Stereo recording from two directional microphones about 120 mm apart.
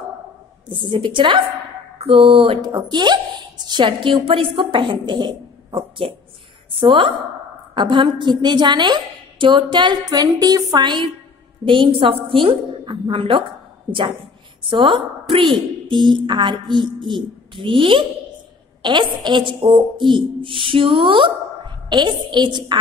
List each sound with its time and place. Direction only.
0.7 s a woman's voice: 45° right (ahead or behind)
2.7 s a woman's voice: 40° right (ahead or behind)
14.7 s a woman's voice: 45° right (ahead or behind)